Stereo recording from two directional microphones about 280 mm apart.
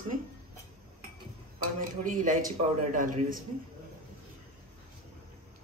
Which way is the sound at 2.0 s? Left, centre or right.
Right.